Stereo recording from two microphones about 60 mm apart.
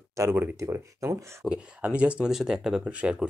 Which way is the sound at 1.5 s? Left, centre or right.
Centre.